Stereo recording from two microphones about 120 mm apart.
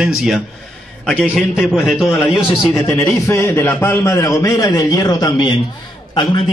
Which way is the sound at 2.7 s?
20° left (ahead or behind).